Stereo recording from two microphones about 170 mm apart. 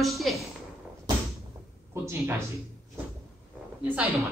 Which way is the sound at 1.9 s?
15° right (ahead or behind).